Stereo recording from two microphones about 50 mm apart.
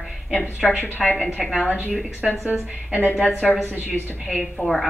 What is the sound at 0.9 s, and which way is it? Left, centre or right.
Speech, left.